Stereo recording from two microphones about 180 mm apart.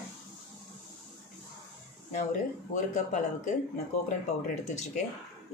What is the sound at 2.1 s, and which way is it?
Speech, 45° left (ahead or behind).